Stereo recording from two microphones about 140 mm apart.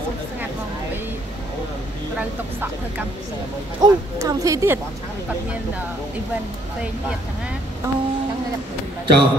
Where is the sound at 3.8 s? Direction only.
25° right (ahead or behind).